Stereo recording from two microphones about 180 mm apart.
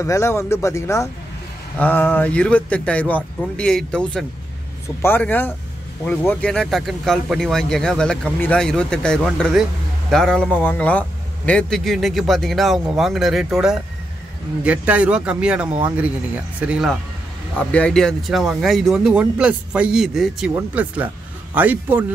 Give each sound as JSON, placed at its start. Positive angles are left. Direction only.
{"t": 0.0, "sound": "a man's voice", "side_deg": 15}
{"t": 17.6, "sound": "a man's voice", "side_deg": 5}